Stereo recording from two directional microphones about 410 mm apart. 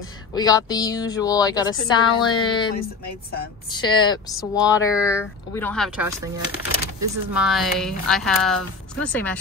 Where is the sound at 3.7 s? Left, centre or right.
Centre.